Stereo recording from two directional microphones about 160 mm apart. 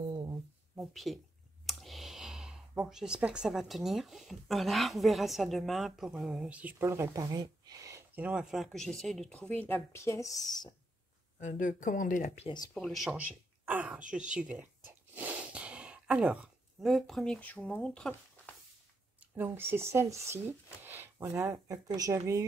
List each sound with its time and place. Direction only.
0.7 s a sound: centre (ahead or behind)
1.7 s speech: centre (ahead or behind); by 10.7 s 25° left (ahead or behind)
11.3 s speech: 50° left (ahead or behind)
12.7 s speech: centre (ahead or behind)
14.4 s gasp: 10° right (ahead or behind)
19.3 s speech: 15° right (ahead or behind)